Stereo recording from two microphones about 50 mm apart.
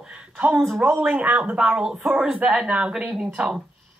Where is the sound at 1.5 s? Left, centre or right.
Centre.